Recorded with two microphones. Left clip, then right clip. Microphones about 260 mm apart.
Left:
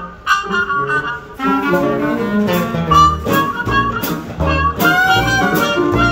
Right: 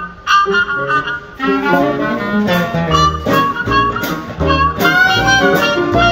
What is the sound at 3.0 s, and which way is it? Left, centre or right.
Music, left.